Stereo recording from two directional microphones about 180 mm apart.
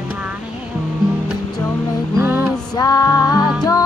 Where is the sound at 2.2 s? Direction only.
10° right (ahead or behind).